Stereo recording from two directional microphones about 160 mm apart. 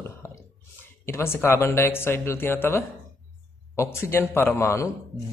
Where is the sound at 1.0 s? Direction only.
15° left (ahead or behind).